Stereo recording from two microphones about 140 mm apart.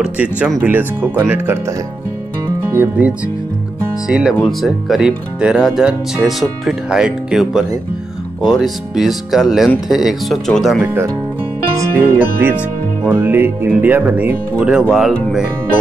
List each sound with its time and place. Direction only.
0.0 s speech: 10° right (ahead or behind)
2.4 s music: 20° right (ahead or behind)
4.1 s speech: 5° right (ahead or behind)
11.7 s music: 15° right (ahead or behind)
13.0 s speech: 15° right (ahead or behind)